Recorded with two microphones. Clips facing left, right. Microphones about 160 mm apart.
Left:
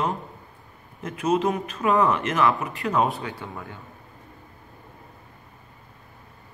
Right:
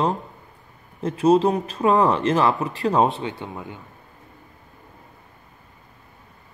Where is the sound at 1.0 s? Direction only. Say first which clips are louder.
Right 6 dB; 30° right (ahead or behind).